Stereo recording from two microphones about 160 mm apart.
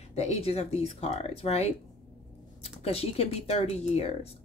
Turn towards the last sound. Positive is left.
turn(degrees=40)  # may be behind; listen again after turning